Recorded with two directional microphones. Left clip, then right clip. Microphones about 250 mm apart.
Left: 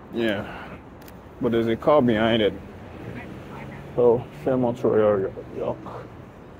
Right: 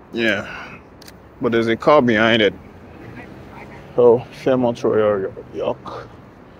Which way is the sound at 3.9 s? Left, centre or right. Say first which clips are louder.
Right 6 dB; right.